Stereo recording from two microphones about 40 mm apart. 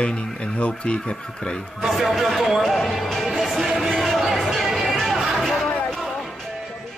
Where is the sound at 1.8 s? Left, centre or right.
Centre.